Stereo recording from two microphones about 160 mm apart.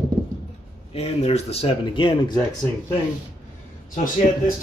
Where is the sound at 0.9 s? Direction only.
40° left (ahead or behind).